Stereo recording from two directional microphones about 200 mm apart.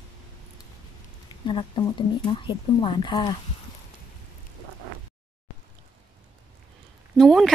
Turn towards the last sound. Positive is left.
turn(degrees=0)  # may be behind; listen again after turning